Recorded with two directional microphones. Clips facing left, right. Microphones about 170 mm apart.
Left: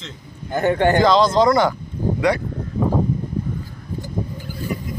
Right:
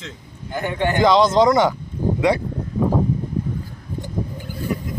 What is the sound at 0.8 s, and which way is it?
Speech, 15° right (ahead or behind).